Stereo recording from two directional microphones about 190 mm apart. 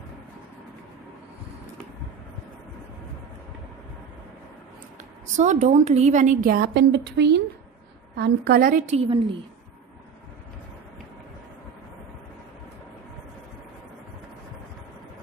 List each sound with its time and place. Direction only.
5.4 s a woman's voice: 40° right (ahead or behind); by 7.4 s 65° right (ahead or behind)
8.2 s a woman's voice: 50° right (ahead or behind); by 9.4 s 30° right (ahead or behind)